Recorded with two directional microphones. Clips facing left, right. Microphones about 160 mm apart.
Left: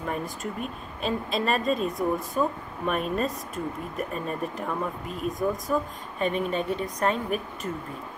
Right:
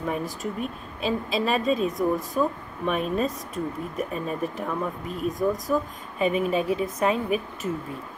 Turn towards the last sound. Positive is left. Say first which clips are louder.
# right 3 dB
turn(degrees=-5)  # may be behind; listen again after turning